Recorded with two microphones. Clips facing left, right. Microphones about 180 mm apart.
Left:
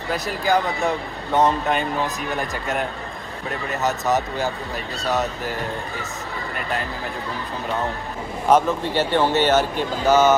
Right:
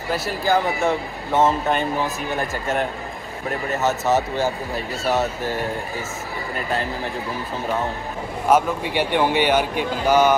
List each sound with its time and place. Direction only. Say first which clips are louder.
0.7 s speech: right 2 dB; centre (ahead or behind)
3.7 s speech: right 2 dB; 15° left (ahead or behind)
8.5 s speech: left 1 dB; 10° right (ahead or behind)